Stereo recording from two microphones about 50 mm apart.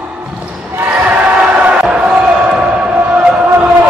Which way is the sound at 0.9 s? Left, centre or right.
Right.